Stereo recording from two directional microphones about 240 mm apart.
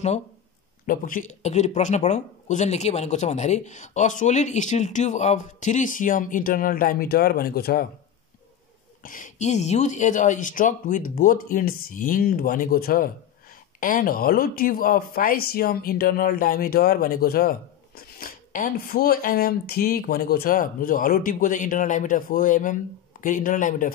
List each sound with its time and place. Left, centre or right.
0.8 s speech: left
9.0 s speech: left